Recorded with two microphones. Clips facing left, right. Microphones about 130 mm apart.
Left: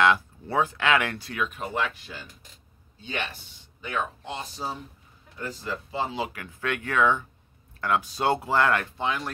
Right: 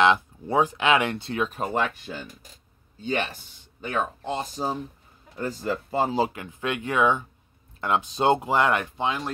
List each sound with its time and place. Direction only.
0.0 s speech: 20° right (ahead or behind); by 6.3 s 40° right (ahead or behind)
6.3 s speech: 20° right (ahead or behind)